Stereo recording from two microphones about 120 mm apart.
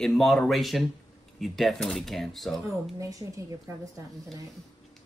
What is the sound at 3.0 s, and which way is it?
Speech, 30° right (ahead or behind).